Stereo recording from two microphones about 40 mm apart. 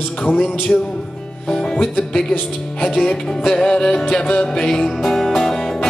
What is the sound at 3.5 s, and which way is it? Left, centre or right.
Music, centre.